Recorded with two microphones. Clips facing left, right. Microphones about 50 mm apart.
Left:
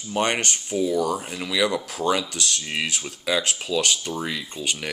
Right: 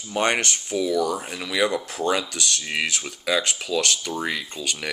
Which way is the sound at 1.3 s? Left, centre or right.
Right.